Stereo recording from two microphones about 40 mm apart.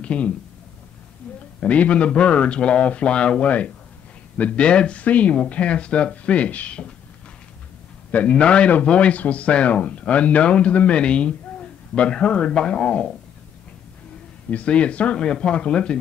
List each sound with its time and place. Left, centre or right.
0.0 s speech: left
1.6 s a man's voice: left
3.4 s speech: left
8.3 s a man's voice: left
14.5 s speech: left
15.1 s a man's voice: left